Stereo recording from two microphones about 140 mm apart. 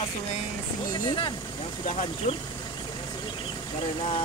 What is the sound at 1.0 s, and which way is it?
Speech, 35° left (ahead or behind).